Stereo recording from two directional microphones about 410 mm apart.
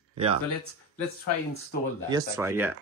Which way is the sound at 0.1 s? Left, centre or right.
Centre.